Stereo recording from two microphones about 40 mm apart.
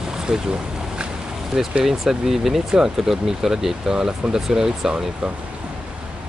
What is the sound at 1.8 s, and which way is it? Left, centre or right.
Speech, centre.